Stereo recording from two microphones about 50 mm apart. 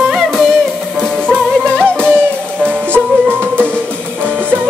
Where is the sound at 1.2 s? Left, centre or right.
Right.